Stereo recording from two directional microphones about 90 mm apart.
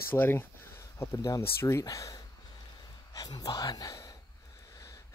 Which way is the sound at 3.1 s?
45° left (ahead or behind).